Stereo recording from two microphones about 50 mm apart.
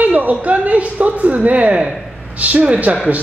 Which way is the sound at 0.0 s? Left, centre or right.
Right.